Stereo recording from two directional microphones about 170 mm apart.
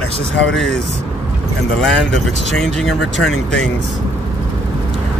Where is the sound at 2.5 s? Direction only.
Centre (ahead or behind).